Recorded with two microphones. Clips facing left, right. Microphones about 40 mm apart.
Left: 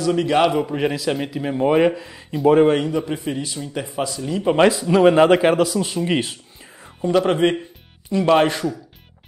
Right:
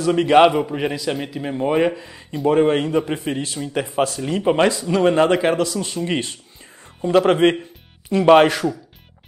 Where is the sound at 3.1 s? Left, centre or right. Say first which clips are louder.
Right 1 dB; right.